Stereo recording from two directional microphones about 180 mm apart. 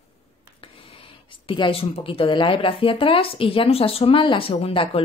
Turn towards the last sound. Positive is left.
turn(degrees=30)  # may be behind; listen again after turning